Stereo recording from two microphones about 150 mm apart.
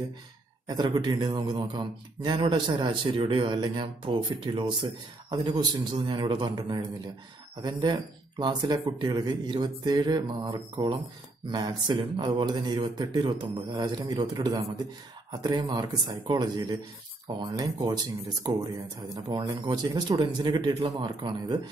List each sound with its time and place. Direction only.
0.7 s speech: 25° right (ahead or behind)
19.0 s speech: 25° right (ahead or behind)